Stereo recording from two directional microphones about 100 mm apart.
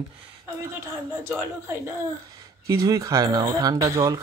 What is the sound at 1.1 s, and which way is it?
Speech, 25° right (ahead or behind).